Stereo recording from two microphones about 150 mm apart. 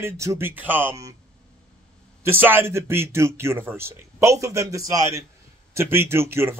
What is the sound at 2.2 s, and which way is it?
Speech, 15° right (ahead or behind).